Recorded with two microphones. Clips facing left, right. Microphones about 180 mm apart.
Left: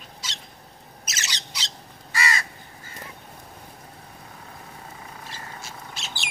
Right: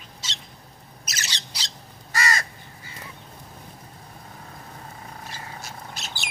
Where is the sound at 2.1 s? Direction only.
40° right (ahead or behind).